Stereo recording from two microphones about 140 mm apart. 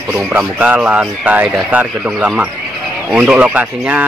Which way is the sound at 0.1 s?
10° right (ahead or behind).